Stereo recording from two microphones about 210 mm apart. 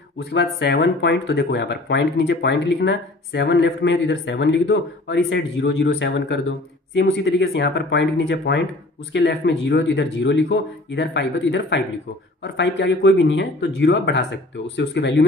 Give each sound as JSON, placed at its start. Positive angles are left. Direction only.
{"t": 0.2, "sound": "speech", "side_deg": 55}